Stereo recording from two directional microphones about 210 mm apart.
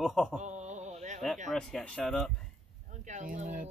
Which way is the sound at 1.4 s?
Centre (ahead or behind).